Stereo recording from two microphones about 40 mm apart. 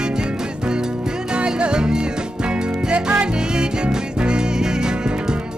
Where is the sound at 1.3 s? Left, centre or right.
Right.